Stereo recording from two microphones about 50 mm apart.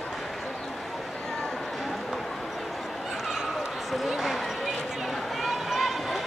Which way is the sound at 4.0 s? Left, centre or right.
Centre.